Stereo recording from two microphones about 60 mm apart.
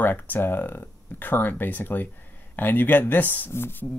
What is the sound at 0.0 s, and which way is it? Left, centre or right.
Speech, left.